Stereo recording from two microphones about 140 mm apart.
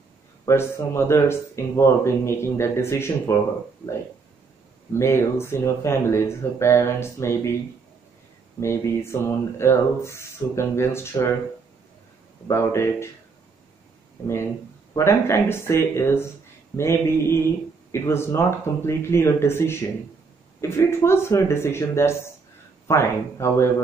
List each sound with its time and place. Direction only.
0.5 s speech: 20° left (ahead or behind)
4.9 s speech: 20° left (ahead or behind)
8.5 s speech: 20° left (ahead or behind)
12.4 s speech: 20° left (ahead or behind)
14.2 s speech: 20° left (ahead or behind)